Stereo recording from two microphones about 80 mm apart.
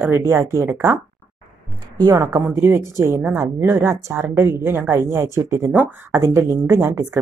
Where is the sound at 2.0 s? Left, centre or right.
Right.